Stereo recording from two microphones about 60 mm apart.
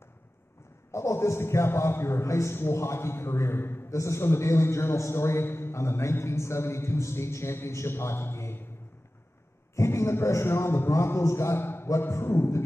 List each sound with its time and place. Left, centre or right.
0.9 s a man's voice: left
3.9 s a man's voice: left
9.8 s a man's voice: left